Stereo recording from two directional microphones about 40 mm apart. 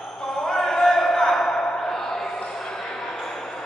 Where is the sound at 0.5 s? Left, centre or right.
Centre.